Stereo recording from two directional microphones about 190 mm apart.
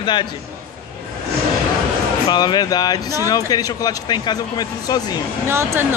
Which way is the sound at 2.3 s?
20° left (ahead or behind).